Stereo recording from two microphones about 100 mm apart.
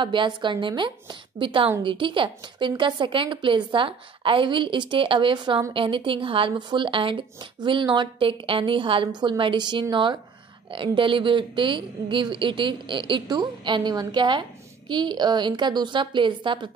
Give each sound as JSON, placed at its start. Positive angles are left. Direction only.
{"t": 0.0, "sound": "a woman's voice", "side_deg": -55}